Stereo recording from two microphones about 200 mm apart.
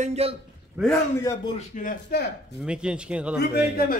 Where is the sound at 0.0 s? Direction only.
30° right (ahead or behind).